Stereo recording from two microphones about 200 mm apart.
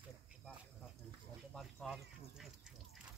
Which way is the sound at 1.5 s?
Centre (ahead or behind).